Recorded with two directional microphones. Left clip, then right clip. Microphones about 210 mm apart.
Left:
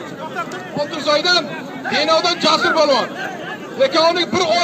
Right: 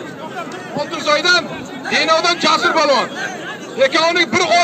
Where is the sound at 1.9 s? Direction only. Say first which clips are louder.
Right 1 dB; 30° right (ahead or behind).